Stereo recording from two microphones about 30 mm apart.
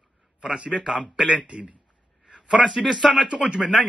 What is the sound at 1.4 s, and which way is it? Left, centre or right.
Speech, right.